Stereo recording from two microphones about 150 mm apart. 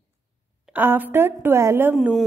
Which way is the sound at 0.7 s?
10° right (ahead or behind).